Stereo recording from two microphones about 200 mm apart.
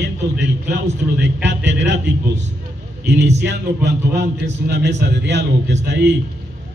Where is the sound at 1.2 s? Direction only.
60° right (ahead or behind).